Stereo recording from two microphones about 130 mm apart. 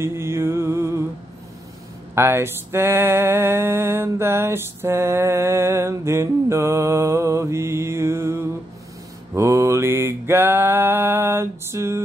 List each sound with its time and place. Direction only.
0.0 s music: 20° right (ahead or behind)
2.1 s a sound: 20° right (ahead or behind)
9.3 s mantra: 20° right (ahead or behind)